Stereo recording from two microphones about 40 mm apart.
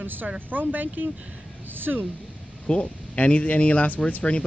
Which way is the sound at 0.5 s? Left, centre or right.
Right.